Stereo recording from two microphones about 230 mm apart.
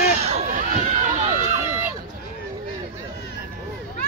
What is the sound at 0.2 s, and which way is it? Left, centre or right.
Run, right.